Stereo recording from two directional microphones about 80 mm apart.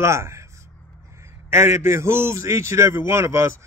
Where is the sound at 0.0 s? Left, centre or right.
Right.